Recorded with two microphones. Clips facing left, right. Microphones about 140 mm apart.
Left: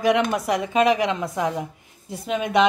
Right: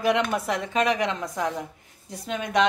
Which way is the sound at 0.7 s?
15° left (ahead or behind).